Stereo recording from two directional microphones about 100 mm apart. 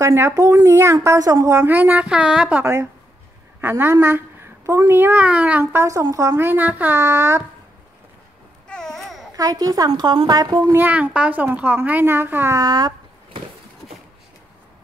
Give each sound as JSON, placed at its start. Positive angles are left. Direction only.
{"t": 0.0, "sound": "a woman's voice", "side_deg": -30}
{"t": 1.7, "sound": "a woman's voice", "side_deg": -15}
{"t": 2.6, "sound": "a woman's voice", "side_deg": -25}
{"t": 6.3, "sound": "a woman's voice", "side_deg": -20}
{"t": 8.6, "sound": "babbling", "side_deg": 5}
{"t": 9.3, "sound": "a woman's voice", "side_deg": -40}
{"t": 10.8, "sound": "a woman's voice", "side_deg": -15}
{"t": 12.5, "sound": "a sound", "side_deg": -45}